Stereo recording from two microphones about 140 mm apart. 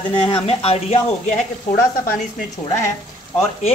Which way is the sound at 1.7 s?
20° left (ahead or behind).